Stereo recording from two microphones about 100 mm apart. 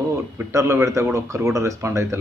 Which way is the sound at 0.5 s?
30° right (ahead or behind).